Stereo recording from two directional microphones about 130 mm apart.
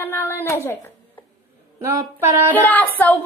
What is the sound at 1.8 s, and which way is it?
Speech, 20° right (ahead or behind).